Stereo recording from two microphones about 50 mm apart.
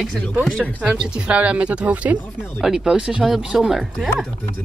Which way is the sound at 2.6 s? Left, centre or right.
Centre.